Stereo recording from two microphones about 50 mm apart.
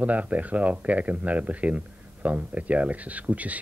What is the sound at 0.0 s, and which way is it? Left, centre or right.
Speech, right.